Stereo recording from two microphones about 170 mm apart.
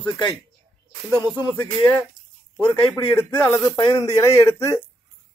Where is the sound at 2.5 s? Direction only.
15° left (ahead or behind).